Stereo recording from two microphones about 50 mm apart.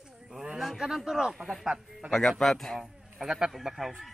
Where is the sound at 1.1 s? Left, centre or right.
Centre.